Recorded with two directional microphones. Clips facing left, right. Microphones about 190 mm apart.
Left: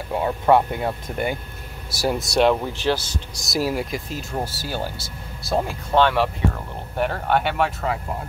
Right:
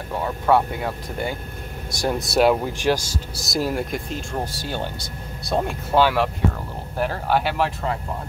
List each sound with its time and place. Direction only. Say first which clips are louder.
0.1 s speech: left 2 dB; 20° left (ahead or behind)
1.9 s speech: left 1 dB; 5° left (ahead or behind)